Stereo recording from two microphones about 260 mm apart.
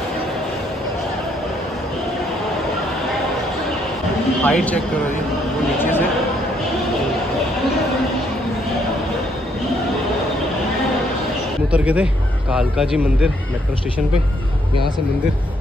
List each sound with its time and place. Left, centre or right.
4.5 s a man's voice: centre
11.7 s a man's voice: centre